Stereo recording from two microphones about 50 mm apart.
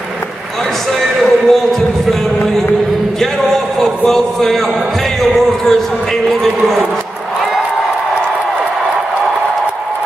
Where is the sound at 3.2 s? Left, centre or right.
Centre.